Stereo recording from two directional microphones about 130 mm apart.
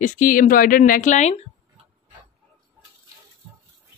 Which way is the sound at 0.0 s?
90° left.